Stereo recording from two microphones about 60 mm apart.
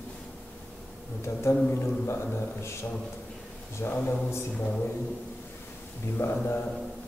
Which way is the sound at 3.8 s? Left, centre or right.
Left.